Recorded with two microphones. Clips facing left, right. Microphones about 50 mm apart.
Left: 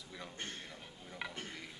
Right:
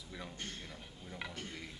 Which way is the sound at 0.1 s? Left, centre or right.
Centre.